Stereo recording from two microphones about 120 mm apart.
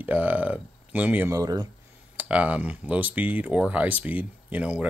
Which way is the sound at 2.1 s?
10° right (ahead or behind).